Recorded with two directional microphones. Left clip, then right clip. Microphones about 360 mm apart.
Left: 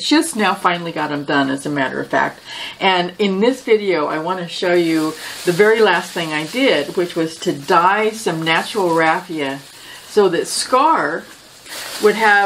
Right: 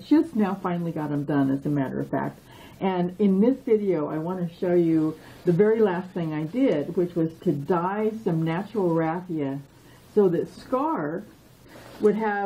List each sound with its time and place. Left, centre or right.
0.0 s speech: centre